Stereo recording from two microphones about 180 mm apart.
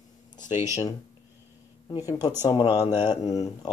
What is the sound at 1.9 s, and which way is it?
Speech, 20° left (ahead or behind).